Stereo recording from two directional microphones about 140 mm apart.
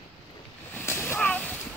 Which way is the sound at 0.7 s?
15° left (ahead or behind).